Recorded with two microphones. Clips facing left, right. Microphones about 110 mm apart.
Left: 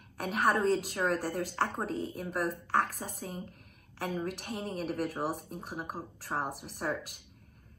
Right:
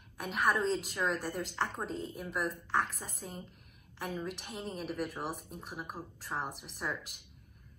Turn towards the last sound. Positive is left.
turn(degrees=50)  # may be behind; listen again after turning